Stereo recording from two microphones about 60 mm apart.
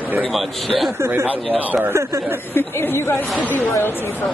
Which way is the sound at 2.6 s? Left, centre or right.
Left.